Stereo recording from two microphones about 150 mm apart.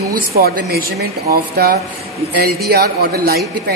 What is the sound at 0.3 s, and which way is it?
Speech, 90° right.